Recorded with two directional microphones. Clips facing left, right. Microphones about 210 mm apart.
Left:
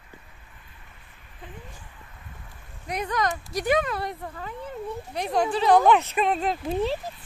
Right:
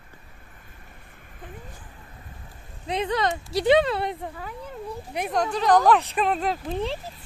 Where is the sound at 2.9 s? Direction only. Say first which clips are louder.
Right 2 dB; 25° right (ahead or behind).